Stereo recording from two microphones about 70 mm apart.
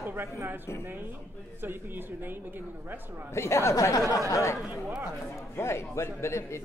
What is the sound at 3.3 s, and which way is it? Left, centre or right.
A man's voice, left.